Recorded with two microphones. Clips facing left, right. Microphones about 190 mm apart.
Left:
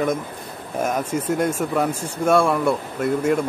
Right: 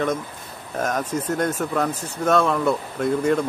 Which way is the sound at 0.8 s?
10° left (ahead or behind).